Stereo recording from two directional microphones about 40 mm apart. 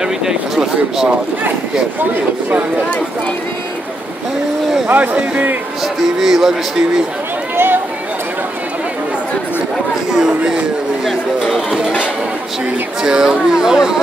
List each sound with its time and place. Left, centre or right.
0.0 s speech: centre
4.9 s speech: right
5.9 s speech: centre
7.5 s a sound: right
10.1 s speech: centre
11.1 s speech: centre
13.0 s speech: centre